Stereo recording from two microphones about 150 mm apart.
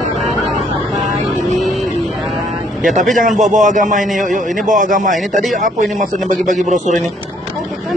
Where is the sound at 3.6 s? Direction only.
55° right (ahead or behind).